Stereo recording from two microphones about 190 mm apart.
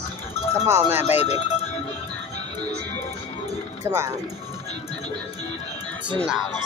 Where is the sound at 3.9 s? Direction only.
15° right (ahead or behind).